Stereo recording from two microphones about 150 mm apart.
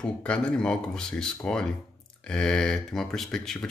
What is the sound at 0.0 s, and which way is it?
Speech, 5° left (ahead or behind).